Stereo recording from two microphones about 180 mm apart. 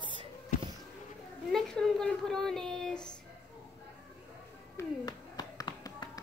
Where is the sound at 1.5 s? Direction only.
5° left (ahead or behind).